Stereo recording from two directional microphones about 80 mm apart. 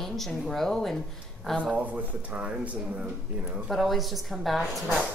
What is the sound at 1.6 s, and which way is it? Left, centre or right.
Speech, centre.